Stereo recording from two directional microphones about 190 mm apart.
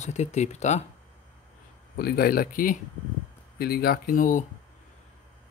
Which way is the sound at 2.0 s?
50° left (ahead or behind).